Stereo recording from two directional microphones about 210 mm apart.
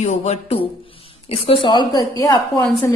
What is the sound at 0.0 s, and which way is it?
A woman's voice, 30° left (ahead or behind).